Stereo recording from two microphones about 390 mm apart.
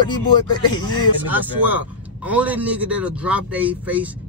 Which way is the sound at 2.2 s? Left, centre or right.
Centre.